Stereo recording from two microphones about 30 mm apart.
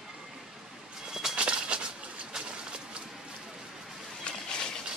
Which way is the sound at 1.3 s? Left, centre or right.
Right.